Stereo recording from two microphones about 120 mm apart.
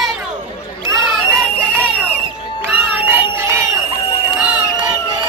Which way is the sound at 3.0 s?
20° right (ahead or behind).